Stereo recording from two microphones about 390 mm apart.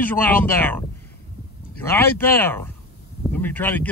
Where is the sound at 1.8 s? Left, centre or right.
Centre.